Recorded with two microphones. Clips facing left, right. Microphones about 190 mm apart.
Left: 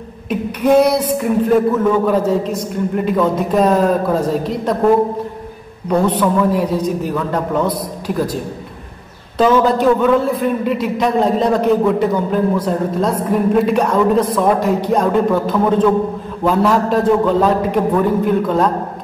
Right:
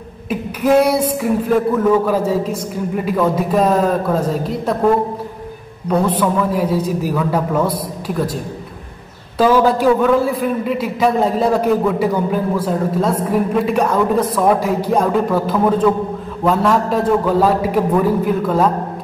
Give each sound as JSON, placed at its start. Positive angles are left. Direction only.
{"t": 0.3, "sound": "a sound", "side_deg": -5}
{"t": 2.0, "sound": "a man's voice", "side_deg": -5}
{"t": 9.4, "sound": "a man's voice", "side_deg": -5}